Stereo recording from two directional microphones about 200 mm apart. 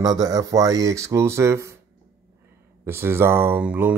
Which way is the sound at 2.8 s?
10° right (ahead or behind).